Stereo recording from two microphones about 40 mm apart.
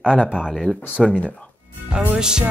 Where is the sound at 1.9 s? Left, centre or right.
Right.